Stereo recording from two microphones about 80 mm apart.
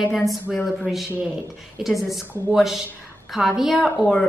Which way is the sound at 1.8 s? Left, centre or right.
Centre.